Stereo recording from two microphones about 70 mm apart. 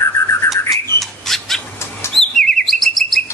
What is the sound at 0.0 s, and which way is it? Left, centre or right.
Bird, left.